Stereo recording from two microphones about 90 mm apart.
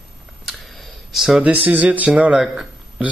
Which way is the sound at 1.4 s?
20° right (ahead or behind).